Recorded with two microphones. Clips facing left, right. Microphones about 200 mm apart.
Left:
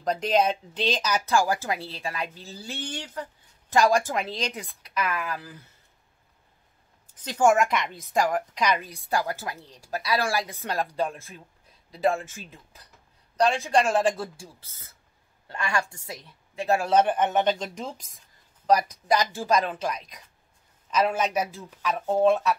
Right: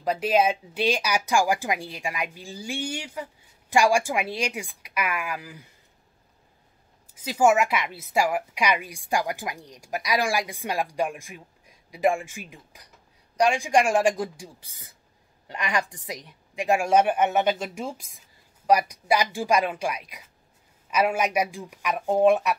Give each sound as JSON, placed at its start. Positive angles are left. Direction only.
{"t": 0.0, "sound": "a woman's voice", "side_deg": -5}
{"t": 7.2, "sound": "a woman's voice", "side_deg": -10}